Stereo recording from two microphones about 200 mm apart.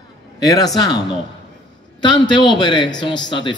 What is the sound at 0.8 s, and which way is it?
A man's voice, 20° left (ahead or behind).